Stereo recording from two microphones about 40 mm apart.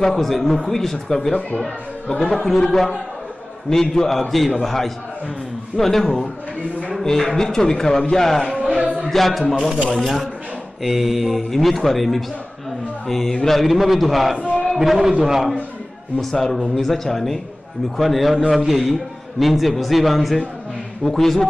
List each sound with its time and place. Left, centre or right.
0.0 s a man's voice: centre
2.4 s a man's voice: centre
16.2 s a man's voice: centre